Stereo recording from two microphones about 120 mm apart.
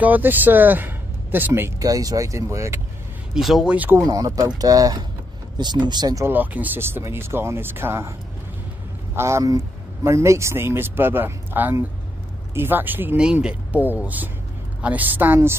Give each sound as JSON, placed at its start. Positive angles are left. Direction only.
{"t": 0.0, "sound": "speech", "side_deg": -15}
{"t": 1.8, "sound": "speech", "side_deg": -30}
{"t": 3.3, "sound": "speech", "side_deg": 0}
{"t": 3.7, "sound": "speech", "side_deg": -15}
{"t": 4.1, "sound": "speech", "side_deg": -30}
{"t": 6.2, "sound": "speech", "side_deg": -15}
{"t": 9.1, "sound": "speech", "side_deg": -20}